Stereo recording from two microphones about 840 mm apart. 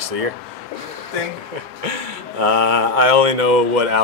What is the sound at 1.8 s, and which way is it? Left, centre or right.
Speech, right.